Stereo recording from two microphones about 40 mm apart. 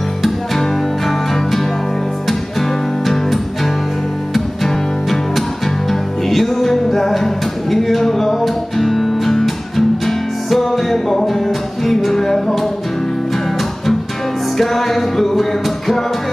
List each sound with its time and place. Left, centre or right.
0.2 s music: centre
14.6 s music: centre